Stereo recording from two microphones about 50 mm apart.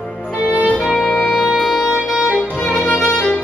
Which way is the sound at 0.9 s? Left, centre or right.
Centre.